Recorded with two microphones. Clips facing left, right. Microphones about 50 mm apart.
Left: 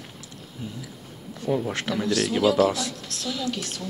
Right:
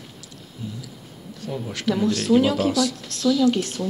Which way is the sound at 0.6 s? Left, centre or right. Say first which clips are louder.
Right 2 dB; left.